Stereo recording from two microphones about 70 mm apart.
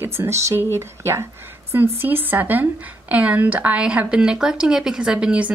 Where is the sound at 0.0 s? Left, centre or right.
Right.